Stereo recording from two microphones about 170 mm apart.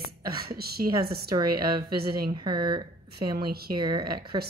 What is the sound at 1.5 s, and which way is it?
Speech, 60° right (ahead or behind).